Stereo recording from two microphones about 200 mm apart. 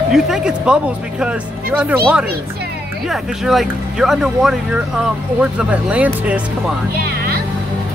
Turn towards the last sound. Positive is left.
turn(degrees=-50)  # may be behind; listen again after turning